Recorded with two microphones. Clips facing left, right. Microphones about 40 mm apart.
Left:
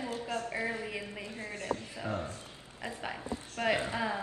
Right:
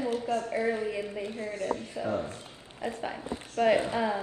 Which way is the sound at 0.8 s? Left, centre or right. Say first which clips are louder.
Right 6 dB; centre.